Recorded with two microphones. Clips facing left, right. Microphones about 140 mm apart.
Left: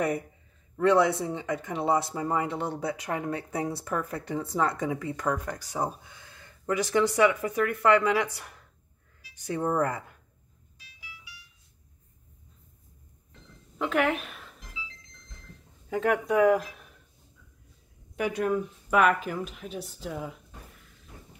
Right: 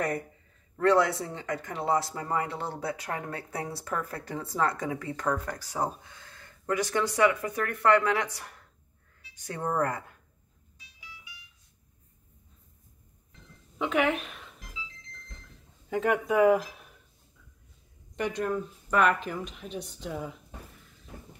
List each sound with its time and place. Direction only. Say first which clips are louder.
0.7 s speech: left 1 dB; 20° left (ahead or behind)
13.7 s a woman's voice: even; centre (ahead or behind)
15.9 s speech: left 1 dB; centre (ahead or behind)
18.1 s speech: left 3 dB; 5° left (ahead or behind)